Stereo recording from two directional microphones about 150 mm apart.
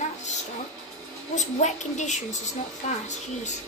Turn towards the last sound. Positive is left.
turn(degrees=50)  # may be behind; listen again after turning